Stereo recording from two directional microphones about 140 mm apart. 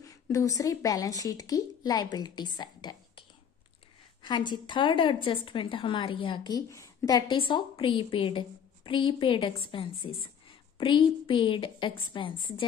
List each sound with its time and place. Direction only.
0.0 s a woman's voice: 25° left (ahead or behind)
7.3 s a woman's voice: 40° left (ahead or behind)